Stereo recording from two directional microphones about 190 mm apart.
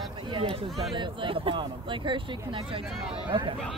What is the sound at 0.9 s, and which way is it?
Speech, 25° right (ahead or behind).